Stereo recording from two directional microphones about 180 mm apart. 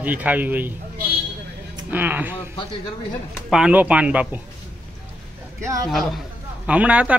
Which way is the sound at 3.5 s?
5° right (ahead or behind).